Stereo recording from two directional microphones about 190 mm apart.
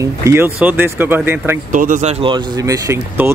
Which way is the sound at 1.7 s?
45° right (ahead or behind).